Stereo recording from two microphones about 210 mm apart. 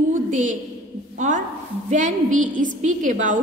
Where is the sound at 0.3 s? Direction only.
35° right (ahead or behind).